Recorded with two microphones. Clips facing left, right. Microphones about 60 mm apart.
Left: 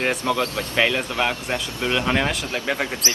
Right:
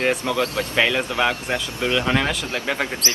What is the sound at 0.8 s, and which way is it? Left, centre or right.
Speech, centre.